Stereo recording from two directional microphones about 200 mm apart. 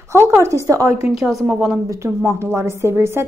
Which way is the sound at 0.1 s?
15° right (ahead or behind).